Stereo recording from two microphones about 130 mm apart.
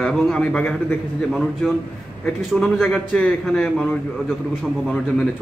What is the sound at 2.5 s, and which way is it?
A man's voice, centre (ahead or behind).